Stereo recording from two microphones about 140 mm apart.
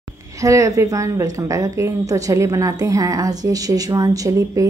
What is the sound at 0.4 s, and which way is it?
A woman's voice, 25° right (ahead or behind).